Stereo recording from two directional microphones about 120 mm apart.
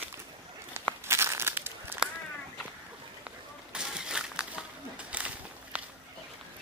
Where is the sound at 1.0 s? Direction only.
20° right (ahead or behind).